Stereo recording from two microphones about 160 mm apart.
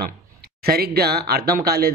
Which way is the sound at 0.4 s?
80° right.